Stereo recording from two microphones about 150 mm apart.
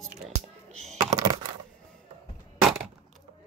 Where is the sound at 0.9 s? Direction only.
25° right (ahead or behind).